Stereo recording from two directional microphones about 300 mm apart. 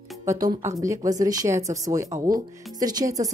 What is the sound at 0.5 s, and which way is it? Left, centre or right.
Speech, centre.